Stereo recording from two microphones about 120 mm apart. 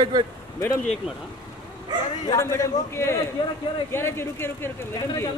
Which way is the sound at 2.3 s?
25° left (ahead or behind).